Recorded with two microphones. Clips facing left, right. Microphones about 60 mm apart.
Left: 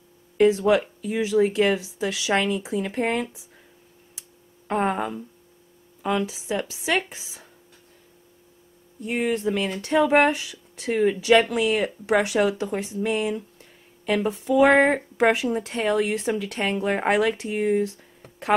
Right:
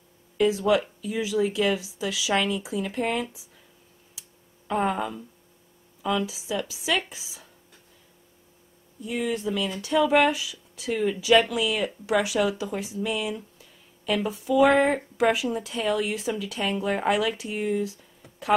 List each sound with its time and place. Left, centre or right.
0.4 s speech: left
4.1 s a sound: left
6.0 s speech: left
9.0 s speech: left